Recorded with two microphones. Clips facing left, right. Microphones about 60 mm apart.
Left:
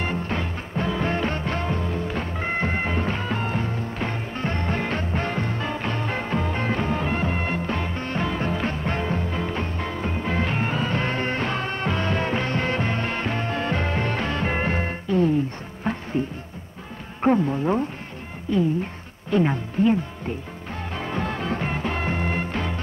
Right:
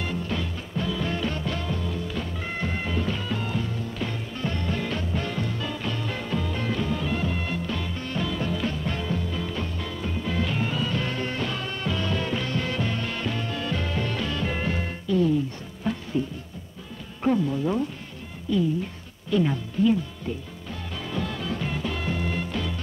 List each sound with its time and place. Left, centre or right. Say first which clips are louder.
0.0 s music: left 3 dB; left
15.8 s insect: left 2 dB; left
17.2 s speech: left 3 dB; left
19.3 s music: left 2 dB; left